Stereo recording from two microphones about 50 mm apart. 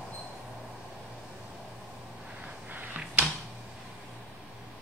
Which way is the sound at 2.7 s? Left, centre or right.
Right.